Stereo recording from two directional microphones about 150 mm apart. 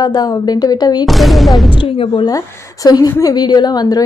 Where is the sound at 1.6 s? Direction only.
35° left (ahead or behind).